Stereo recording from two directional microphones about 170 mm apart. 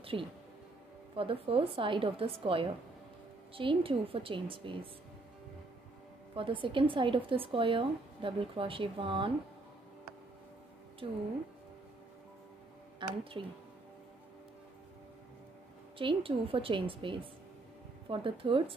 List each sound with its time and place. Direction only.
0.0 s a woman's voice: 35° right (ahead or behind)
6.3 s a woman's voice: 30° right (ahead or behind)
11.0 s speech: 30° right (ahead or behind)
13.0 s speech: 30° right (ahead or behind)
16.0 s a woman's voice: 30° right (ahead or behind)